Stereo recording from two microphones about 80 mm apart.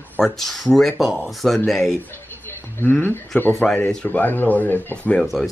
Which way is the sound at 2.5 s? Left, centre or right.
Left.